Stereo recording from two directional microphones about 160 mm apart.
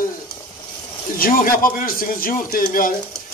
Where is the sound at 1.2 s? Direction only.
65° left (ahead or behind).